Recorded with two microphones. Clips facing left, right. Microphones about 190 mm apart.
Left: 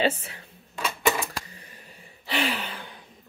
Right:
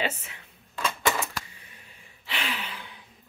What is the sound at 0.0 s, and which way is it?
Speech, 35° left (ahead or behind).